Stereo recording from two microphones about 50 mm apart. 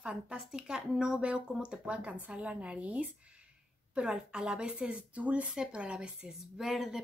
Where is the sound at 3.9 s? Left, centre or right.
Centre.